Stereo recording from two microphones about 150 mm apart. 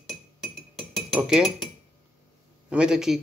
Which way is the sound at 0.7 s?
Centre (ahead or behind).